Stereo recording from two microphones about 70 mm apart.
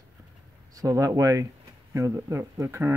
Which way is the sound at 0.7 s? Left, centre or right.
Right.